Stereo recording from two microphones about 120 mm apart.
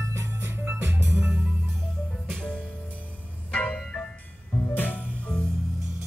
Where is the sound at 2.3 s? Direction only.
5° left (ahead or behind).